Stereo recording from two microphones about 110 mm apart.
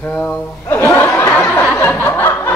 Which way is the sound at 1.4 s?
20° left (ahead or behind).